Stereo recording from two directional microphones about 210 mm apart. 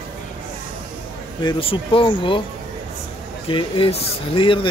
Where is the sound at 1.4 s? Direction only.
25° left (ahead or behind).